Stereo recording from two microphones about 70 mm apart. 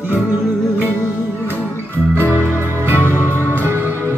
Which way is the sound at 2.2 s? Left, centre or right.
Right.